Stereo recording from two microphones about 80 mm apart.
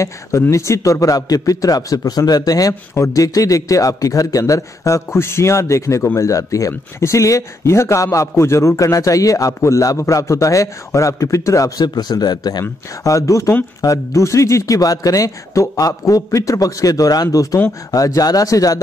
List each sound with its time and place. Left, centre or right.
0.0 s a man's voice: left
11.8 s speech: left
13.0 s a man's voice: left